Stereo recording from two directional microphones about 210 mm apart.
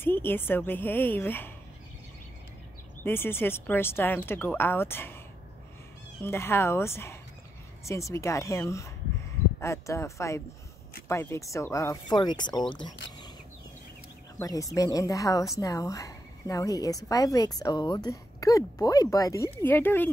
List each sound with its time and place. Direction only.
0.0 s a woman's voice: 10° left (ahead or behind)
3.0 s a woman's voice: 10° left (ahead or behind)
6.2 s a woman's voice: 10° left (ahead or behind)
14.4 s a woman's voice: 15° left (ahead or behind)